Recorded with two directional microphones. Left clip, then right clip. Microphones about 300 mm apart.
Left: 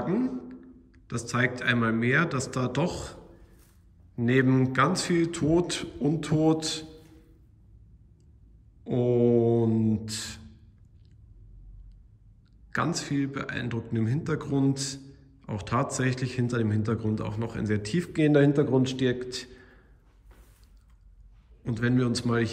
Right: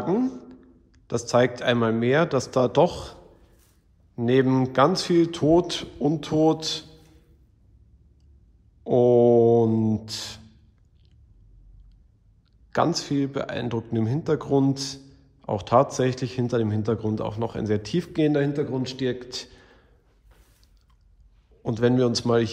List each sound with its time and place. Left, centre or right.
0.0 s a man's voice: centre
8.8 s a man's voice: centre
12.7 s a man's voice: centre
21.6 s a man's voice: centre